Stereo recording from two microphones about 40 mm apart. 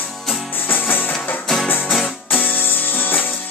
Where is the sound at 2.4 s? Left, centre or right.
Left.